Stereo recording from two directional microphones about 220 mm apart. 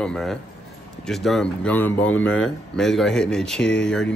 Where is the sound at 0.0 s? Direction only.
Centre (ahead or behind).